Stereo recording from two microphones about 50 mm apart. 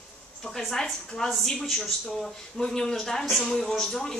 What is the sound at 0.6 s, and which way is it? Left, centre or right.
A woman's voice, centre.